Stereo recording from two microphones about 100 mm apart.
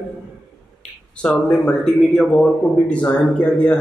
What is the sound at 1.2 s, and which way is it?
A man's voice, 10° left (ahead or behind).